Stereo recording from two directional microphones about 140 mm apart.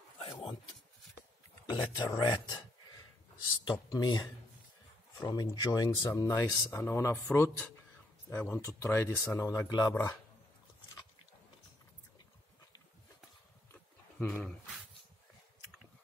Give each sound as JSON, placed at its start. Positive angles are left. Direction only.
{"t": 0.2, "sound": "a sound", "side_deg": 40}
{"t": 1.7, "sound": "speech", "side_deg": 25}
{"t": 3.7, "sound": "speech", "side_deg": 30}
{"t": 14.3, "sound": "speech", "side_deg": 5}